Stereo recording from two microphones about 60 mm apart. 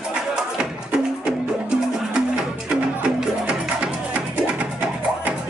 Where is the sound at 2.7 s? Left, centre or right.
Centre.